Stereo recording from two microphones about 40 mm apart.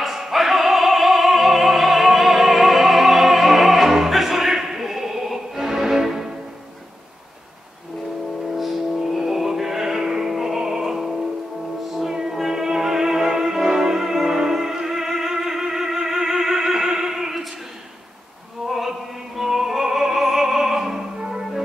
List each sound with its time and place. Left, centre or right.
0.0 s opera: centre
8.5 s music: centre
18.7 s music: centre